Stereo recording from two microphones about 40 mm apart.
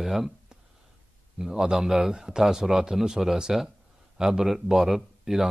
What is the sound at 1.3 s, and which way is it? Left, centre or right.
A man's voice, centre.